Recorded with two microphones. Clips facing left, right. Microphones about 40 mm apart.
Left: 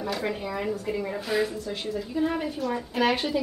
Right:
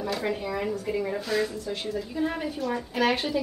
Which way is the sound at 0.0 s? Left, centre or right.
Centre.